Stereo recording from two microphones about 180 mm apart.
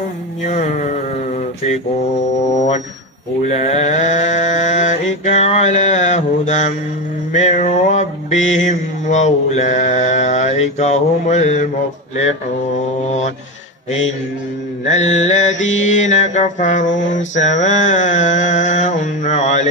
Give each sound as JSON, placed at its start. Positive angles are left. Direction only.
{"t": 0.4, "sound": "a sound", "side_deg": 40}
{"t": 3.4, "sound": "mantra", "side_deg": 40}
{"t": 14.9, "sound": "mantra", "side_deg": 40}